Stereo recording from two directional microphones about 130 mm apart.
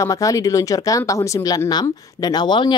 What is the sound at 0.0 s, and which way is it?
Speech, 25° left (ahead or behind).